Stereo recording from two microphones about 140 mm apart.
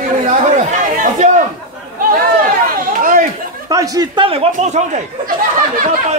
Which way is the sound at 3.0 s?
70° right (ahead or behind).